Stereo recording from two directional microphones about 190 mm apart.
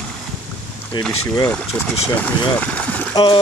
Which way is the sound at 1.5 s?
5° left (ahead or behind).